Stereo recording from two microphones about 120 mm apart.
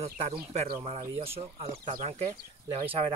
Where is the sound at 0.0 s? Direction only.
65° right (ahead or behind).